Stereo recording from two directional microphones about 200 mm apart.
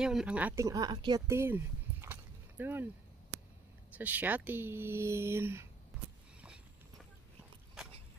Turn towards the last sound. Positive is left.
turn(degrees=-5)  # may be behind; listen again after turning